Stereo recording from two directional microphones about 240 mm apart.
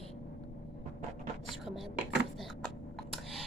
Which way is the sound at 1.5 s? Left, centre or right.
Centre.